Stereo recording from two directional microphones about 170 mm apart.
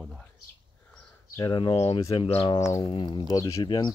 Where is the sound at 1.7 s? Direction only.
35° left (ahead or behind).